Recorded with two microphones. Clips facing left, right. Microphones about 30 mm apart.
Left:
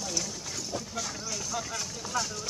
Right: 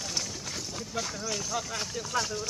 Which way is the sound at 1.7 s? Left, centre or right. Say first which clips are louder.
Right 2 dB; right.